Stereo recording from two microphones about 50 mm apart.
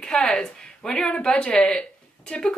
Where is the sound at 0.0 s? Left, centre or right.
Centre.